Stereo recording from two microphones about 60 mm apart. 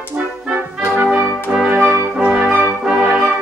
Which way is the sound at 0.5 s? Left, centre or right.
Right.